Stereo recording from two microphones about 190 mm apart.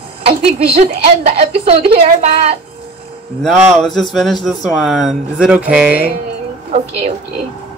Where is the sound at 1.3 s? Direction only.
30° right (ahead or behind).